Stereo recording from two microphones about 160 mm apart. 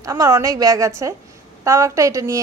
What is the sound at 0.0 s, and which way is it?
A woman's voice, 20° right (ahead or behind).